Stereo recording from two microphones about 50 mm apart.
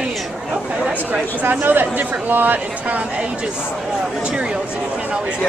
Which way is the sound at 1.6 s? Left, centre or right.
Right.